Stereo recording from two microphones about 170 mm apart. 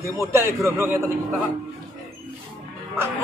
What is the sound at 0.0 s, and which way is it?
A man's voice, 15° right (ahead or behind).